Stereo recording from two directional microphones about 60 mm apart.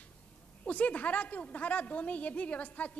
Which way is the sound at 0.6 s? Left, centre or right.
Left.